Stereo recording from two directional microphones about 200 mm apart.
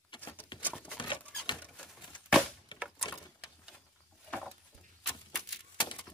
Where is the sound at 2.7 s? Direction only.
25° left (ahead or behind).